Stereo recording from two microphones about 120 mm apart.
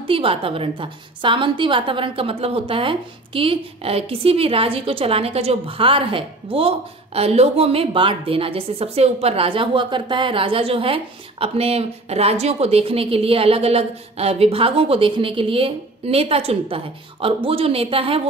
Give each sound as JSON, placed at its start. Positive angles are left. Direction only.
{"t": 0.0, "sound": "a woman's voice", "side_deg": -50}